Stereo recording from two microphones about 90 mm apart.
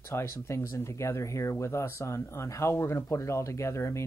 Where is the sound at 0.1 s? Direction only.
30° left (ahead or behind).